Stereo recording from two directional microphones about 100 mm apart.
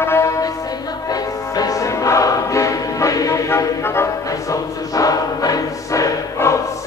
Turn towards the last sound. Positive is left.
turn(degrees=30)  # may be behind; listen again after turning